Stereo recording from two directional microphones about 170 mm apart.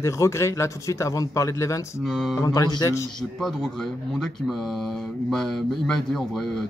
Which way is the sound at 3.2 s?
Centre (ahead or behind).